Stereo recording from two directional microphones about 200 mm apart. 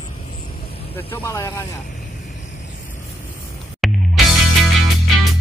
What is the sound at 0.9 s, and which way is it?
Speech, 15° left (ahead or behind).